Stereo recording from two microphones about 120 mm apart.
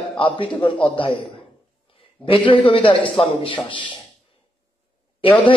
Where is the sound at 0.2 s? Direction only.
45° left (ahead or behind).